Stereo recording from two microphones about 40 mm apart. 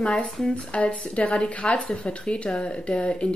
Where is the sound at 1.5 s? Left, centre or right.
Left.